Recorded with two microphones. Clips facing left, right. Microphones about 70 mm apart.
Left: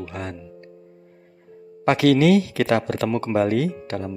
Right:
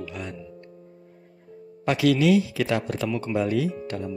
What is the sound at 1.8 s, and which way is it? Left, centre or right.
Speech, left.